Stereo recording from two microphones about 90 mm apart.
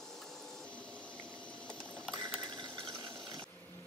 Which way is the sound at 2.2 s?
45° right (ahead or behind).